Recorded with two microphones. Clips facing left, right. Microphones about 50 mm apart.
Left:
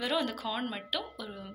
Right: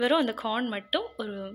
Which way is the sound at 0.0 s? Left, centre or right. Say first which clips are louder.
Right 7 dB; right.